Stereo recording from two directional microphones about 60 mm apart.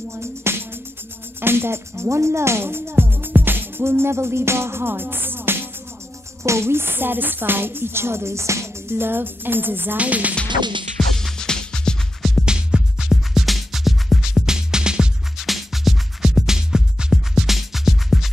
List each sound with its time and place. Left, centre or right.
0.1 s music: right
1.4 s speech: right
6.4 s speech: right
9.9 s speech: right
11.0 s music: centre
12.4 s music: centre
15.4 s music: centre